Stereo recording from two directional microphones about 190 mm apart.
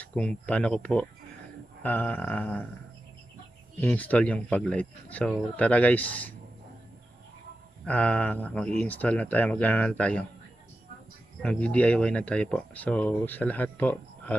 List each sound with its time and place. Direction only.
0.0 s speech: 5° left (ahead or behind)
3.8 s speech: 10° left (ahead or behind)
7.8 s speech: 5° left (ahead or behind)
11.4 s speech: 5° left (ahead or behind)